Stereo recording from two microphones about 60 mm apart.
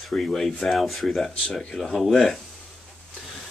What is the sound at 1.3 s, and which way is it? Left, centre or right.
Speech, centre.